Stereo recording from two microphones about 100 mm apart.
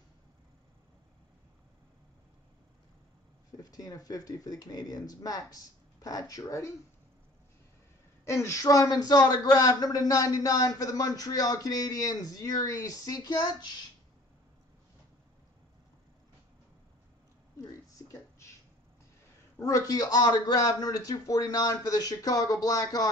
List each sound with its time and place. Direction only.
3.5 s a man's voice: 35° left (ahead or behind)
8.3 s a man's voice: 30° left (ahead or behind); by 13.8 s 45° left (ahead or behind)
17.6 s a sound: 30° left (ahead or behind)
19.6 s a man's voice: 35° left (ahead or behind)